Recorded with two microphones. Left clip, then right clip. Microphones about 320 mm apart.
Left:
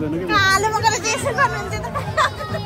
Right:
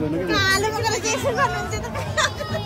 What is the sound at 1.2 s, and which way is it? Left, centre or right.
Music, left.